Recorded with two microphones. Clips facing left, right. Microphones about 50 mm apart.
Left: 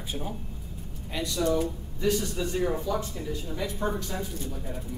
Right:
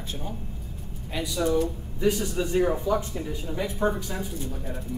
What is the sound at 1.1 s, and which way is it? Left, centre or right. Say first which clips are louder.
Speech: right 1 dB; centre.